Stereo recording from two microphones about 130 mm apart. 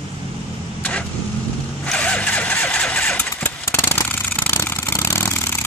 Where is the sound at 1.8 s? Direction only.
10° left (ahead or behind).